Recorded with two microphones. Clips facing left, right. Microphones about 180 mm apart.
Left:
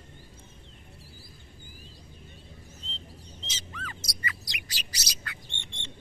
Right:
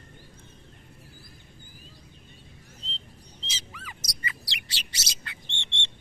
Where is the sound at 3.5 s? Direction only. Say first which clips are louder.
Left 3 dB; 10° right (ahead or behind).